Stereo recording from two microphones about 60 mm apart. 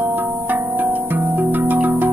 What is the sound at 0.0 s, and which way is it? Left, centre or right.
Music, right.